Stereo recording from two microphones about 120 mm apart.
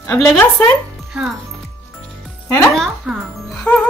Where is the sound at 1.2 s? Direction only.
10° right (ahead or behind).